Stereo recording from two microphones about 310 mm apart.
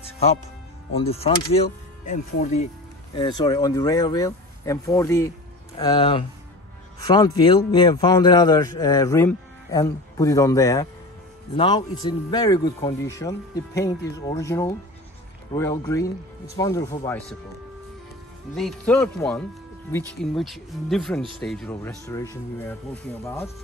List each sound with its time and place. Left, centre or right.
0.9 s a man's voice: centre
18.5 s a man's voice: centre